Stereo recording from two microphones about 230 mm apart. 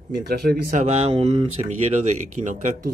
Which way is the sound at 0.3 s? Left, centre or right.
Right.